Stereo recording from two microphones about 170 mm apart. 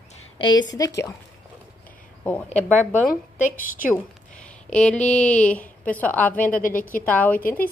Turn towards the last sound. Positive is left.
turn(degrees=10)  # may be behind; listen again after turning